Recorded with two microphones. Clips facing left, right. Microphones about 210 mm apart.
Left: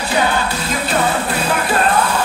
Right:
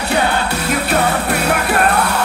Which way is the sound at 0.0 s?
65° right (ahead or behind).